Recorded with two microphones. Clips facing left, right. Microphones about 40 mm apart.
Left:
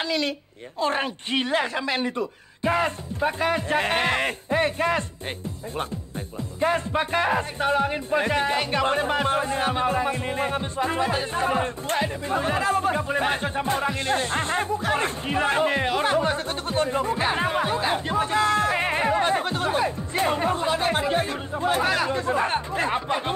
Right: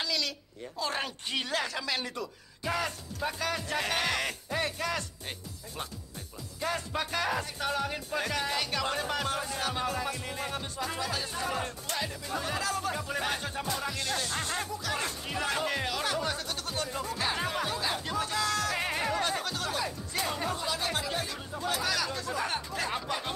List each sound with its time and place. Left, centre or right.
0.0 s a sound: left
0.7 s music: left
6.6 s music: left